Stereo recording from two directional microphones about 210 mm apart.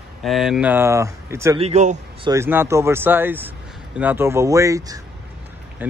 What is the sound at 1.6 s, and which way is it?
Speech, 35° right (ahead or behind).